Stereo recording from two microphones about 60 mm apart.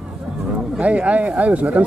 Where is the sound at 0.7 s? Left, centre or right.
Centre.